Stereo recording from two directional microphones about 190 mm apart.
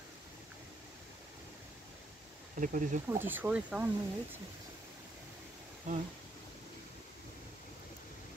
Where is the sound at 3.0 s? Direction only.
10° right (ahead or behind).